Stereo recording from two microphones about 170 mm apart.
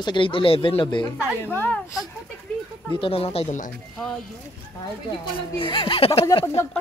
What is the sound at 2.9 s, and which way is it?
Speech, 35° left (ahead or behind).